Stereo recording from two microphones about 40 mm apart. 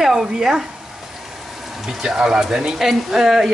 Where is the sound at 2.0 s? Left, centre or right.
Centre.